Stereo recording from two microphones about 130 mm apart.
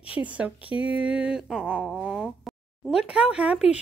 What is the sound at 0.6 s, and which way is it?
Speech, 45° left (ahead or behind).